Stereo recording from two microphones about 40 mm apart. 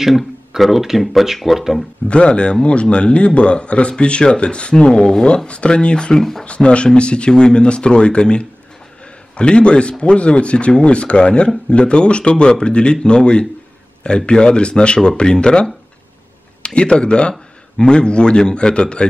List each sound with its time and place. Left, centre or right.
0.6 s speech: centre
2.0 s a man's voice: left
6.1 s speech: centre
6.4 s a man's voice: left
16.6 s a man's voice: left